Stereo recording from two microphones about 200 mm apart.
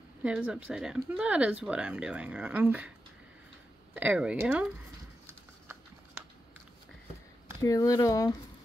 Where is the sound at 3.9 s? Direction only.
5° right (ahead or behind).